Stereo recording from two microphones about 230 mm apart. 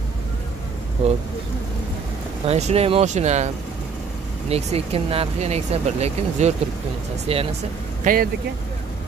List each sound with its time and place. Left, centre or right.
2.4 s speech: right
4.5 s speech: right
8.0 s speech: right